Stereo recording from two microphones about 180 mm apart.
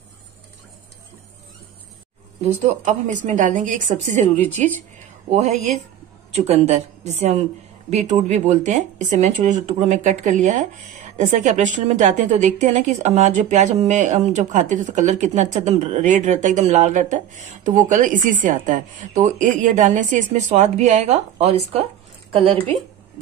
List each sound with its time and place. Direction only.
2.4 s a woman's voice: 40° right (ahead or behind)
6.3 s a woman's voice: 35° right (ahead or behind)